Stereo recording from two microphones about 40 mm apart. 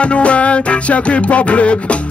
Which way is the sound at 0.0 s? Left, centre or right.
Left.